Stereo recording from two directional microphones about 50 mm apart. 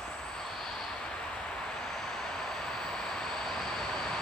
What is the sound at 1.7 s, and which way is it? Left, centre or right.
Train, centre.